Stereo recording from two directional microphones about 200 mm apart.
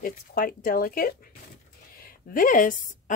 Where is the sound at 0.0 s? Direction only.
45° left (ahead or behind).